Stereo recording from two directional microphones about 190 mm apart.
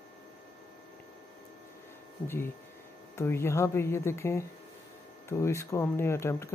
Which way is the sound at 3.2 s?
15° left (ahead or behind).